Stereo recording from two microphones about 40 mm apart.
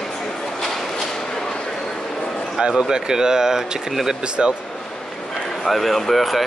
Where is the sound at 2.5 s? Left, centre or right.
Centre.